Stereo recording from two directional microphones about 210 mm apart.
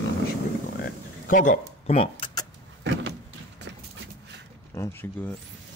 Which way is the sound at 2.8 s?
55° right (ahead or behind).